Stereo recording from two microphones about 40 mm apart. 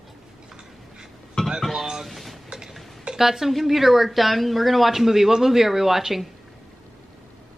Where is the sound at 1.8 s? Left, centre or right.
Centre.